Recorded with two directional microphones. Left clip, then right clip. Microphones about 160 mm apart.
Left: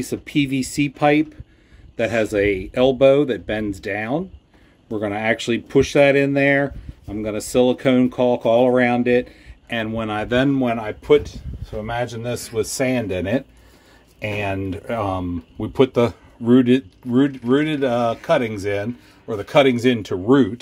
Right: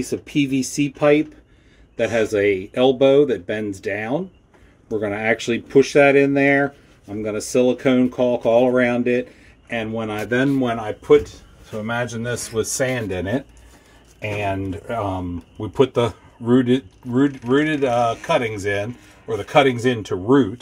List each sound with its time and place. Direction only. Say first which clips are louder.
0.1 s speech: even; 30° left (ahead or behind)
18.5 s speech: right 1 dB; 45° left (ahead or behind)